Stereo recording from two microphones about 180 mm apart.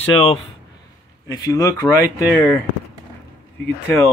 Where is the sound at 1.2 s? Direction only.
20° left (ahead or behind).